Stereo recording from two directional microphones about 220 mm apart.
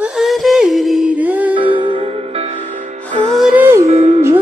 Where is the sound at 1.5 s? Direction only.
20° right (ahead or behind).